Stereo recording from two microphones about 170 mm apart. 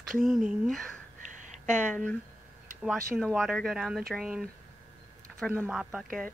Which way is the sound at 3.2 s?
Centre (ahead or behind).